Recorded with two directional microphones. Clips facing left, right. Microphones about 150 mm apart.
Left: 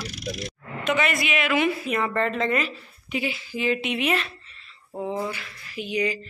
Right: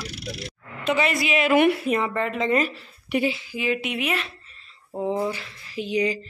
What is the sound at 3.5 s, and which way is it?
Speech, 10° right (ahead or behind).